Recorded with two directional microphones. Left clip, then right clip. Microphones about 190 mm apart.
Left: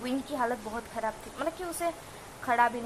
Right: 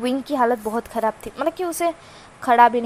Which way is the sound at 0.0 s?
20° right (ahead or behind).